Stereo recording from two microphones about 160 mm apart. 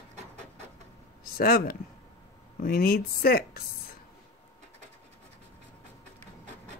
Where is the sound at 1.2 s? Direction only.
70° left (ahead or behind).